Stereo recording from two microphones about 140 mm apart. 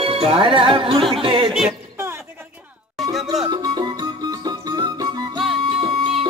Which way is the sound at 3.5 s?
35° right (ahead or behind).